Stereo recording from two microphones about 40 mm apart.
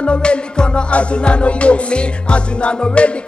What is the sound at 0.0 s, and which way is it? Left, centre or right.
Music, left.